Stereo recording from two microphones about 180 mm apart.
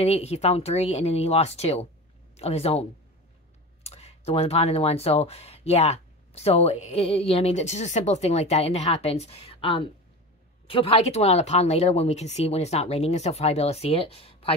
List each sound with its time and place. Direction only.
0.0 s speech: 35° left (ahead or behind)